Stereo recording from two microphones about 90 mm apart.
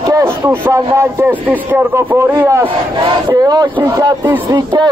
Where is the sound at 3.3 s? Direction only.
45° right (ahead or behind).